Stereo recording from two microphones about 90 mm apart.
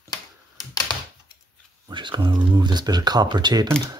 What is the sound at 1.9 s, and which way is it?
Speech, 60° right (ahead or behind).